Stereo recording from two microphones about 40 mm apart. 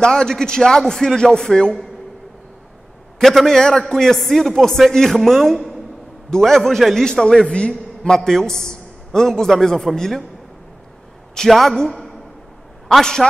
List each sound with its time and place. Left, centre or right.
0.0 s a man's voice: centre
3.2 s a man's voice: centre
7.3 s a man's voice: left
8.1 s a man's voice: centre
11.3 s a man's voice: centre
13.0 s a man's voice: centre